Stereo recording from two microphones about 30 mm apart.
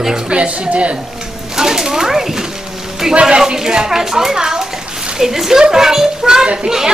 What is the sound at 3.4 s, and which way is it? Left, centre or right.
A woman's voice, right.